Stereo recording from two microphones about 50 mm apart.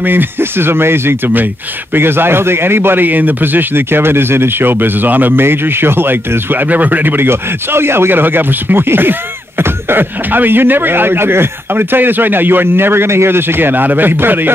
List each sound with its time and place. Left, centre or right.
0.0 s a man's voice: right